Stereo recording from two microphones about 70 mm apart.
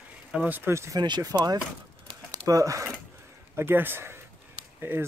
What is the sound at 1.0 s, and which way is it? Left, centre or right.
Speech, right.